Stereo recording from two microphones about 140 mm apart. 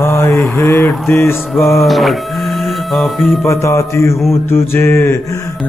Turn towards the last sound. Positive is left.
turn(degrees=20)  # may be behind; listen again after turning